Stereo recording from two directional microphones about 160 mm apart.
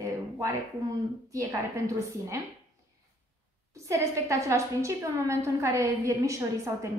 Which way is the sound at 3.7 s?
20° right (ahead or behind).